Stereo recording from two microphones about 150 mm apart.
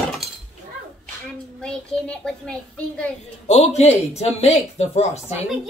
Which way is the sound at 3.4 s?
45° left (ahead or behind).